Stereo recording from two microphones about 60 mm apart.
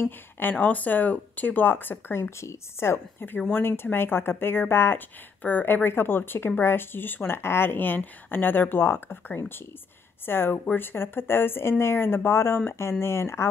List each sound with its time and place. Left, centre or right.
0.0 s a woman's voice: left
5.4 s a woman's voice: left